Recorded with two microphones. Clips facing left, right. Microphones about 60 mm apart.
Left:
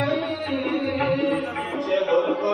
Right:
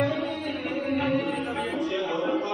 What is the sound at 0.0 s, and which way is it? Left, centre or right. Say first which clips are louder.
Music: left 2 dB; left.